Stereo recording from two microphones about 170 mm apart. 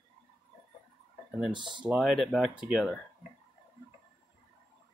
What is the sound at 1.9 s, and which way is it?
Speech, centre (ahead or behind).